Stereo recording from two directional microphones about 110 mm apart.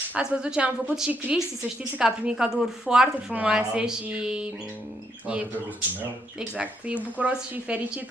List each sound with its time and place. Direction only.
0.1 s a woman's voice: 10° right (ahead or behind)
7.2 s a woman's voice: 15° right (ahead or behind)